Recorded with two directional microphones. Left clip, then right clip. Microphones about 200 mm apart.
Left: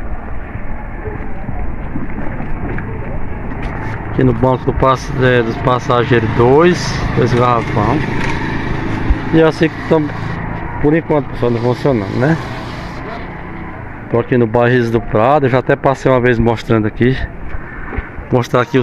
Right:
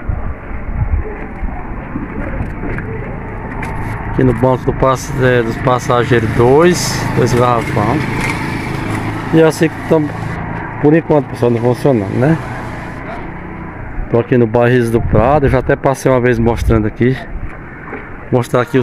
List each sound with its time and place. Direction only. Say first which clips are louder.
4.2 s speech: right 1 dB; 5° right (ahead or behind)
9.3 s speech: right 1 dB; 10° right (ahead or behind)
11.4 s speech: right 1 dB; 25° right (ahead or behind)
14.1 s speech: right 1 dB; 15° right (ahead or behind)
18.3 s speech: even; centre (ahead or behind)